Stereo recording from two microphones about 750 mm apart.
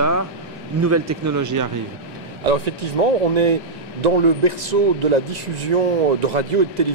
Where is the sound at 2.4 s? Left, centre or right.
Right.